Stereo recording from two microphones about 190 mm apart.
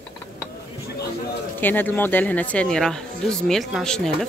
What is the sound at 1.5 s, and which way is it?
Speech, 10° left (ahead or behind).